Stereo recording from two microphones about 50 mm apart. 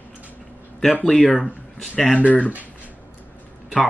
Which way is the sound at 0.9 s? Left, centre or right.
Centre.